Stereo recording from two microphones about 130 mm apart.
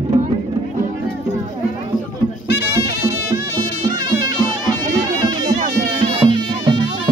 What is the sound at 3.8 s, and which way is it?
Music, 30° right (ahead or behind).